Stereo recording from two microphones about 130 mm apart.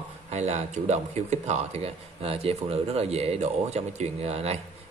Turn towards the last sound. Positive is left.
turn(degrees=-55)  # may be behind; listen again after turning